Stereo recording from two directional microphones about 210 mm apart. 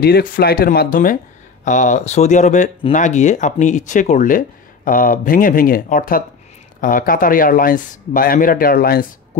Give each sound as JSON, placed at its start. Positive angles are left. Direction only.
{"t": 0.0, "sound": "speech", "side_deg": 50}